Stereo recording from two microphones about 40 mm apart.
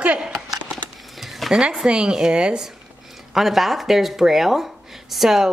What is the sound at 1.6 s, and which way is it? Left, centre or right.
A woman's voice, centre.